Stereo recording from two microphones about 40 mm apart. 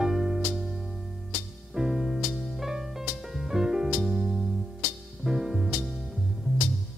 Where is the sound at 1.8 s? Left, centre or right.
Centre.